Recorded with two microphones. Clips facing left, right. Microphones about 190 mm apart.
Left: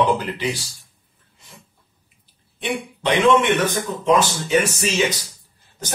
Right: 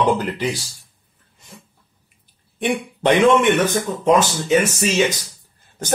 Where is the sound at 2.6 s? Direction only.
50° right (ahead or behind).